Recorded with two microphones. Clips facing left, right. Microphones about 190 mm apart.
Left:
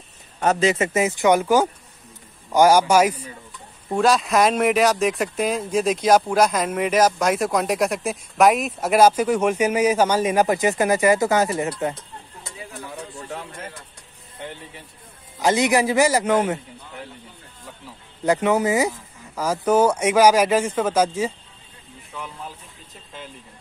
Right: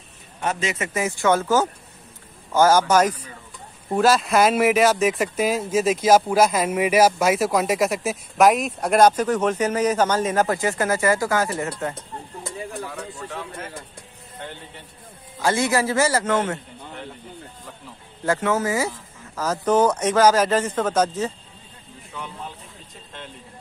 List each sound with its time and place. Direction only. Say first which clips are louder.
0.4 s speech: left 6 dB; 40° left (ahead or behind); by 3.3 s 10° left (ahead or behind)
3.9 s speech: even; centre (ahead or behind); by 11.9 s 15° left (ahead or behind)
15.4 s speech: left 2 dB; 15° left (ahead or behind)
18.2 s speech: left 3 dB; 15° left (ahead or behind)